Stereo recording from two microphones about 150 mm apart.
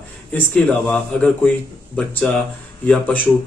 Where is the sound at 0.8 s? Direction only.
10° left (ahead or behind).